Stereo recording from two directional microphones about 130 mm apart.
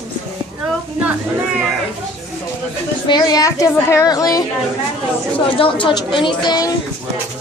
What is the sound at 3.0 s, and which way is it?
A woman's voice, 30° left (ahead or behind).